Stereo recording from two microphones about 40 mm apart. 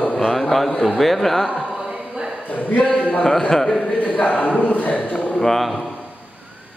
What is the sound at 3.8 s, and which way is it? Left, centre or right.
A man's voice, left.